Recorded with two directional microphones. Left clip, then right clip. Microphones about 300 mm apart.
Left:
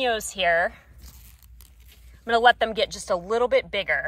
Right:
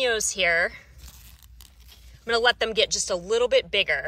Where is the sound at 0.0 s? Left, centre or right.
Centre.